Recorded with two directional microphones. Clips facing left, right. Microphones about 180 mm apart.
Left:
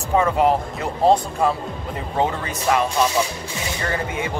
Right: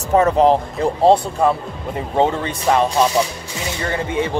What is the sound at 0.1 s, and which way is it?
Speech, 35° right (ahead or behind).